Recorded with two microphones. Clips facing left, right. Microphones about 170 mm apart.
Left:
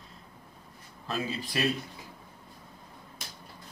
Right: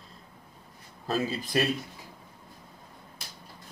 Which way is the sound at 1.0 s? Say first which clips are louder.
Right 4 dB; 40° right (ahead or behind).